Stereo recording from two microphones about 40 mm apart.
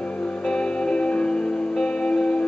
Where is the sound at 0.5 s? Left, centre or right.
Left.